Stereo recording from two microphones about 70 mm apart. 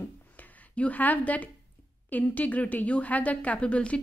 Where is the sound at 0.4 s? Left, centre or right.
Left.